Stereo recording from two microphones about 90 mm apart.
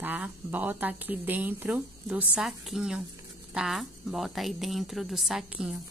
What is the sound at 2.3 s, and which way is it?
A woman's voice, 5° right (ahead or behind).